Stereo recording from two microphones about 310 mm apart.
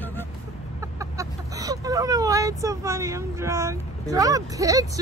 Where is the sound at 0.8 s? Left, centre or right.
Centre.